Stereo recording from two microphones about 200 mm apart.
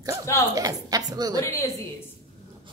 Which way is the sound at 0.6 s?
20° right (ahead or behind).